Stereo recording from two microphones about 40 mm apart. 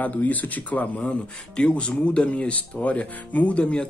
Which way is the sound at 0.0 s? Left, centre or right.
Left.